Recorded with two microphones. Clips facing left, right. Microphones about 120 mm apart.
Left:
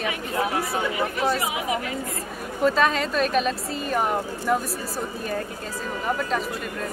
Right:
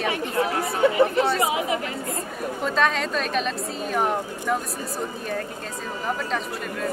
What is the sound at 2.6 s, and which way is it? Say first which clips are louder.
Speech: left 3 dB; centre (ahead or behind).